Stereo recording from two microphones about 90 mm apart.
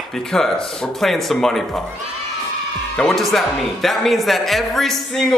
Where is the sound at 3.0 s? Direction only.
5° left (ahead or behind).